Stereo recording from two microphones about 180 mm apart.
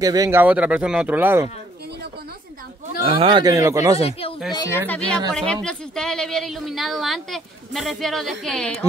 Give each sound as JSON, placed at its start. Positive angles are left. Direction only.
{"t": 0.0, "sound": "speech", "side_deg": -20}
{"t": 3.0, "sound": "speech", "side_deg": -30}
{"t": 4.6, "sound": "speech", "side_deg": 15}